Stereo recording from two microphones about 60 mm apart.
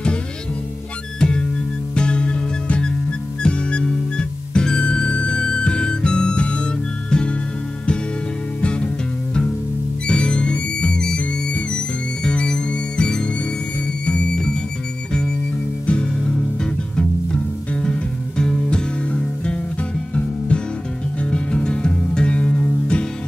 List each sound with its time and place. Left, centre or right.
1.2 s music: centre
8.5 s music: centre
10.0 s music: centre
15.9 s music: left
17.8 s music: centre
21.2 s music: centre